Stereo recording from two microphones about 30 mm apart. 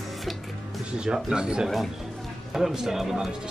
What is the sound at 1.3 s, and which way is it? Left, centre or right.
Speech, right.